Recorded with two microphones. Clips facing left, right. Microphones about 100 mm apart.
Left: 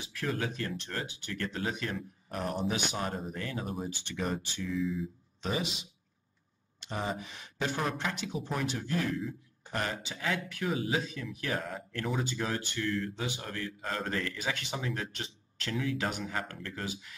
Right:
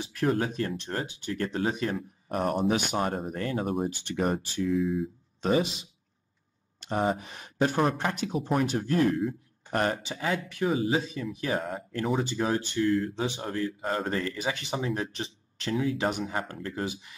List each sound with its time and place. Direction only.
0.0 s speech: 35° right (ahead or behind)
2.2 s speech: 50° right (ahead or behind)
6.8 s speech: 45° right (ahead or behind)
10.1 s speech: 30° right (ahead or behind)
12.8 s speech: 40° right (ahead or behind)
13.4 s speech: 25° right (ahead or behind)